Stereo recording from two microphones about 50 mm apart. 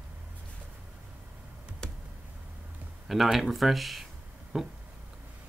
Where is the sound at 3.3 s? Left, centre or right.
Centre.